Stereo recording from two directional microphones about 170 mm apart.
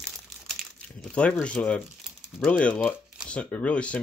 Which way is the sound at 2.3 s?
5° left (ahead or behind).